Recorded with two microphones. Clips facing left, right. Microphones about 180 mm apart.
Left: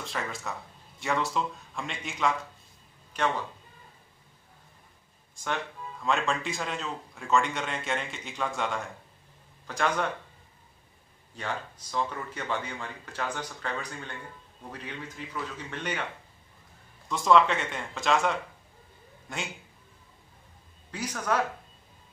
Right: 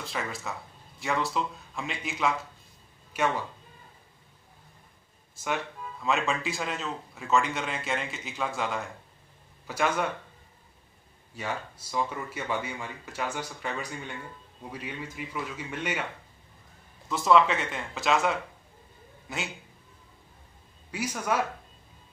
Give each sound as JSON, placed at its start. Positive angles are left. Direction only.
{"t": 0.0, "sound": "a man's voice", "side_deg": 0}
{"t": 6.0, "sound": "a man's voice", "side_deg": 0}
{"t": 11.3, "sound": "speech", "side_deg": -10}
{"t": 17.1, "sound": "a man's voice", "side_deg": -5}
{"t": 20.9, "sound": "speech", "side_deg": -10}